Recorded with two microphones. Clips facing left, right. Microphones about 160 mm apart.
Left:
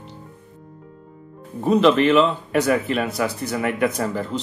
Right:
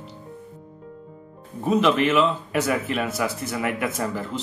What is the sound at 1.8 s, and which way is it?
Speech, 35° left (ahead or behind).